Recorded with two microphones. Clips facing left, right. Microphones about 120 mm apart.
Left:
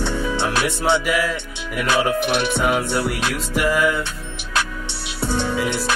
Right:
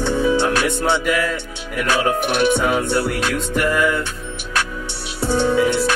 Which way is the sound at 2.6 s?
10° left (ahead or behind).